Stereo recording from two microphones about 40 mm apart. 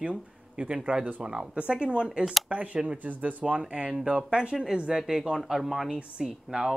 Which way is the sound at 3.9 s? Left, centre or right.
Right.